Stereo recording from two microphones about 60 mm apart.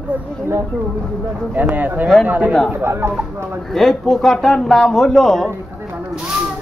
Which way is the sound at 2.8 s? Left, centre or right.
Right.